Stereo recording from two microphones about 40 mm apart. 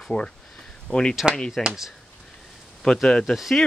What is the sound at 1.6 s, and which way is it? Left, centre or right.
Speech, centre.